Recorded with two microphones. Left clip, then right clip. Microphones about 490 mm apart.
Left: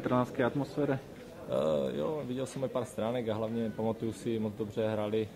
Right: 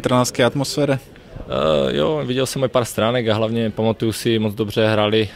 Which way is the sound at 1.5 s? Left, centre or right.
Right.